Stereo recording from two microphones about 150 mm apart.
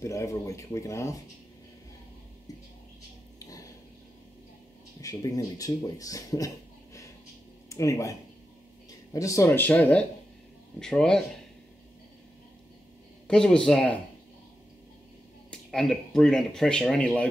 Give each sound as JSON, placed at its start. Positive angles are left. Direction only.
{"t": 0.0, "sound": "speech", "side_deg": 20}
{"t": 3.3, "sound": "a sound", "side_deg": 20}
{"t": 5.0, "sound": "speech", "side_deg": 20}
{"t": 13.3, "sound": "speech", "side_deg": 5}
{"t": 15.5, "sound": "speech", "side_deg": 5}